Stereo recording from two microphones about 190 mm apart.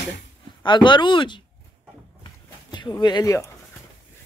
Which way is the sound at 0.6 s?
25° left (ahead or behind).